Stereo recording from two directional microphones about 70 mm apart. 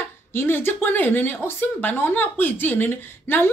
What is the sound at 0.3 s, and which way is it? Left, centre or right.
Speech, left.